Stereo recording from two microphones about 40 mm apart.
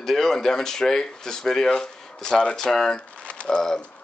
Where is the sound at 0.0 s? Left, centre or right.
Centre.